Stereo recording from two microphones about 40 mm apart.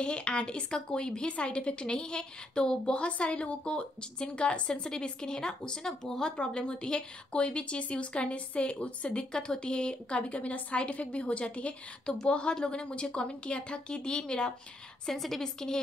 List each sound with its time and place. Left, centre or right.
0.0 s speech: left
6.3 s speech: left
12.1 s a woman's voice: centre
12.4 s speech: left
15.0 s a woman's voice: centre
15.4 s a woman's voice: centre